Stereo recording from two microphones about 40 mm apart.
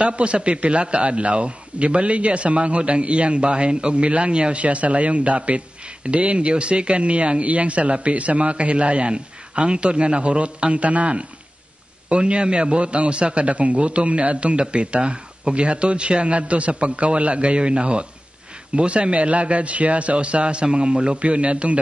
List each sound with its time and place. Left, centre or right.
0.0 s a man's voice: right